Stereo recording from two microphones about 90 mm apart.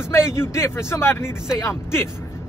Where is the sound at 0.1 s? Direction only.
30° left (ahead or behind).